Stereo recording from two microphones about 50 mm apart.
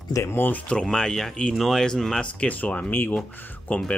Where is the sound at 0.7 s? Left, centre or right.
Centre.